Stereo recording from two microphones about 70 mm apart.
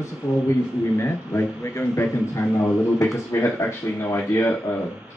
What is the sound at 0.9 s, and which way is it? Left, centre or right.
A man's voice, left.